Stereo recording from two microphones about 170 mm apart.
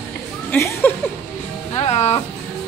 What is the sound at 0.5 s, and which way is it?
Speech, 15° left (ahead or behind).